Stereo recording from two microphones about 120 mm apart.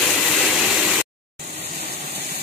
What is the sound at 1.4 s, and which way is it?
Vehicle, 65° right (ahead or behind).